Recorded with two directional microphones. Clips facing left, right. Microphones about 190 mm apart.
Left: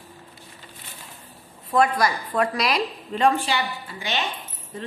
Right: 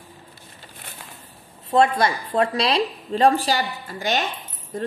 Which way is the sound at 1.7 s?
25° right (ahead or behind).